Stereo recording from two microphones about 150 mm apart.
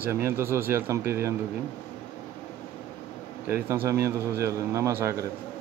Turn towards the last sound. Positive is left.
turn(degrees=-20)  # may be behind; listen again after turning